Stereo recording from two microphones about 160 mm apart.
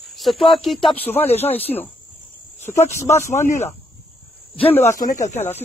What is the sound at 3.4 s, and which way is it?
Speech, 45° left (ahead or behind).